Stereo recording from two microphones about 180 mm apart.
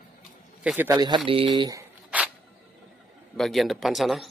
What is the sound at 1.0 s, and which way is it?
Speech, 25° right (ahead or behind).